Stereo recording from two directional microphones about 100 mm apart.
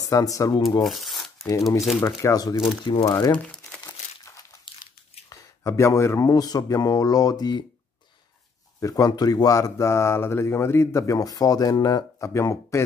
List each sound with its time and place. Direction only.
0.0 s speech: 35° left (ahead or behind)
0.8 s rub: centre (ahead or behind)
1.4 s speech: 30° left (ahead or behind)
2.9 s speech: 45° left (ahead or behind)
3.3 s crumpling: 10° left (ahead or behind)
5.3 s speech: 30° left (ahead or behind)
8.7 s speech: 35° left (ahead or behind)
12.4 s speech: 30° left (ahead or behind)